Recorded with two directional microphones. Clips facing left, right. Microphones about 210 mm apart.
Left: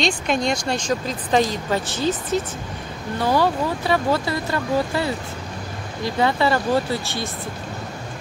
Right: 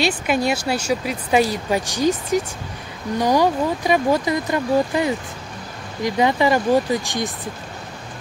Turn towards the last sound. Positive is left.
turn(degrees=-15)  # may be behind; listen again after turning